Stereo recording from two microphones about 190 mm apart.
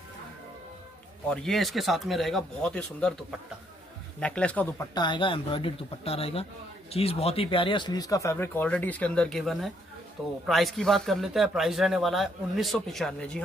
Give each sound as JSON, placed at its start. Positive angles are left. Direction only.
{"t": 1.3, "sound": "speech", "side_deg": 0}
{"t": 4.9, "sound": "speech", "side_deg": 25}